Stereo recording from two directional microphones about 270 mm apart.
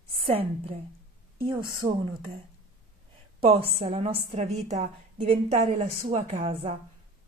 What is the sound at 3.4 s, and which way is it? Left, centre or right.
A woman's voice, right.